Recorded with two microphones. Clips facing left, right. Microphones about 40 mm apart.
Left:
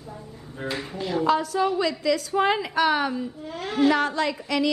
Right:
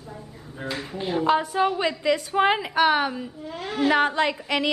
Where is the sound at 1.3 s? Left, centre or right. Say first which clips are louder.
Right 1 dB; right.